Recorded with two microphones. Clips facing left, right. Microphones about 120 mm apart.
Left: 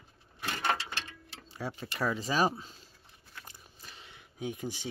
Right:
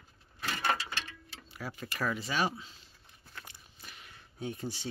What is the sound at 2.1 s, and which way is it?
Speech, 35° left (ahead or behind).